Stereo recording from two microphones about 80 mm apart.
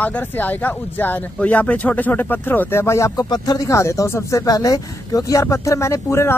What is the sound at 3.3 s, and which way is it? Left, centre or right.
Speech, left.